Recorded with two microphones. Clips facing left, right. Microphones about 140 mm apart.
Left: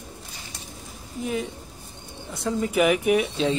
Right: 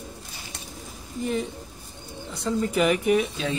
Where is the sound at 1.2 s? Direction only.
5° left (ahead or behind).